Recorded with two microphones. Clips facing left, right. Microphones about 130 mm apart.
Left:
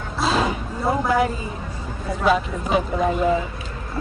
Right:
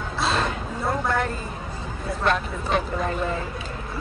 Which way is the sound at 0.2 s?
5° left (ahead or behind).